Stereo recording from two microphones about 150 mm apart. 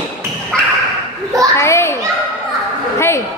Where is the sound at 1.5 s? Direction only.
20° left (ahead or behind).